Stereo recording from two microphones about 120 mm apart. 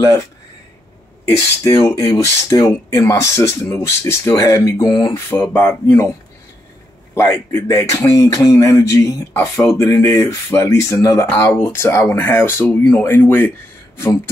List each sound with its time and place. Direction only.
1.6 s speech: 25° left (ahead or behind)
7.2 s speech: 20° left (ahead or behind)